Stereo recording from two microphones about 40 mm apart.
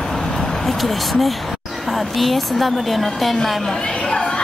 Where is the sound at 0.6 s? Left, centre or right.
Centre.